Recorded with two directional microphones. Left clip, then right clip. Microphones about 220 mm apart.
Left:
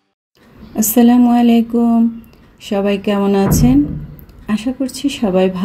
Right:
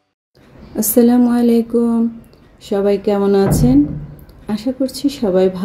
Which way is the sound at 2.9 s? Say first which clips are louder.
Right 2 dB; 55° left (ahead or behind).